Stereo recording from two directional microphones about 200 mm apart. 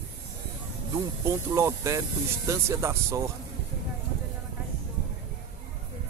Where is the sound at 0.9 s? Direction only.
15° right (ahead or behind).